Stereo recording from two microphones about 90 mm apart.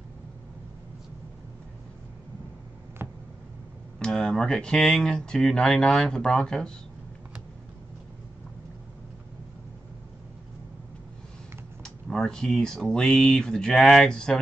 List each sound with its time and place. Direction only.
3.0 s a sound: 25° right (ahead or behind)
4.0 s speech: 10° left (ahead or behind)
11.8 s speech: 5° left (ahead or behind)